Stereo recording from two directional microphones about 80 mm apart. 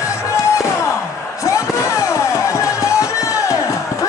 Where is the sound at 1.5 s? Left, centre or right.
Left.